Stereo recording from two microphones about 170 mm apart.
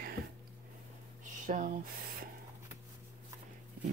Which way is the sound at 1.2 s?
50° right (ahead or behind).